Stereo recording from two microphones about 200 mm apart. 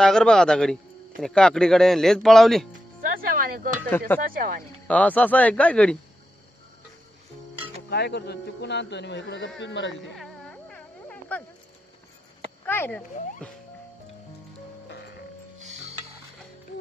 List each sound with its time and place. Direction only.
0.0 s speech: 5° left (ahead or behind)
3.0 s music: 45° right (ahead or behind)
4.3 s speech: 45° right (ahead or behind)
4.8 s speech: 5° left (ahead or behind)
7.9 s speech: 55° left (ahead or behind)
10.1 s music: centre (ahead or behind)
12.6 s speech: 10° left (ahead or behind)
14.9 s music: 55° left (ahead or behind)
15.6 s music: 35° right (ahead or behind)